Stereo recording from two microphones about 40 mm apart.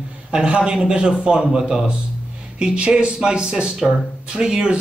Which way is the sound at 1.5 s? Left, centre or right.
Centre.